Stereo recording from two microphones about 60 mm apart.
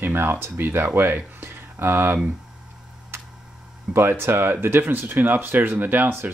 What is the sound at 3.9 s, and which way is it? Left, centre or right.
Speech, right.